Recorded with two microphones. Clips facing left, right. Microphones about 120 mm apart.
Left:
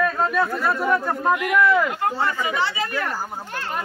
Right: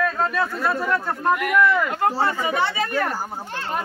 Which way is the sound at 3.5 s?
25° right (ahead or behind).